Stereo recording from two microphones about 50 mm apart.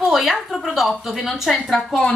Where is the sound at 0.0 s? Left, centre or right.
Centre.